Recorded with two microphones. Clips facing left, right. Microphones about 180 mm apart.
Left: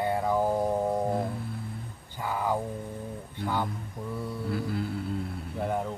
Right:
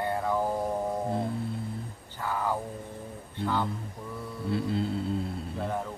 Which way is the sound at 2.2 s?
15° left (ahead or behind).